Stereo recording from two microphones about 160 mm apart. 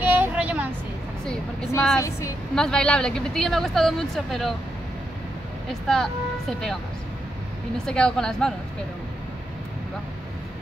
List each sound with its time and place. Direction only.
0.0 s vehicle: 10° right (ahead or behind)
2.0 s a woman's voice: 20° left (ahead or behind)
2.5 s speech: 5° left (ahead or behind)
5.7 s speech: centre (ahead or behind)
7.8 s speech: 5° left (ahead or behind)